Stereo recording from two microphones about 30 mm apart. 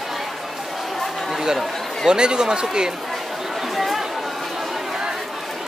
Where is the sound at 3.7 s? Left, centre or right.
Centre.